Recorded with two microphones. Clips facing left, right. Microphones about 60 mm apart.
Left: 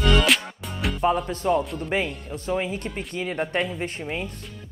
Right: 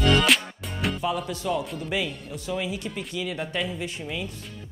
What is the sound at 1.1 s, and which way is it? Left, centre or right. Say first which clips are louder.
Speech: left 5 dB; left.